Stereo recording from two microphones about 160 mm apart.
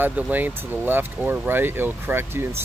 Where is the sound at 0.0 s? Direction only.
10° right (ahead or behind).